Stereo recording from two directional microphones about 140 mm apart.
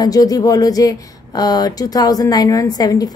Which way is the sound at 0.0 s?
25° left (ahead or behind).